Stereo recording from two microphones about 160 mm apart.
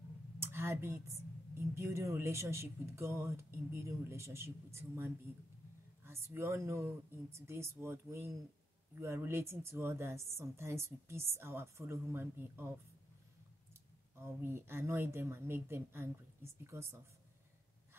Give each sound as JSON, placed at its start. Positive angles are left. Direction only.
{"t": 0.4, "sound": "a woman's voice", "side_deg": -15}
{"t": 14.1, "sound": "a woman's voice", "side_deg": -15}